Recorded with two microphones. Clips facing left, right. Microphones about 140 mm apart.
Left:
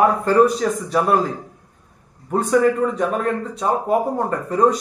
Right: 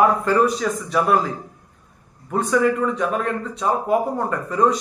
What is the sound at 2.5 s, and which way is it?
A man's voice, 35° left (ahead or behind).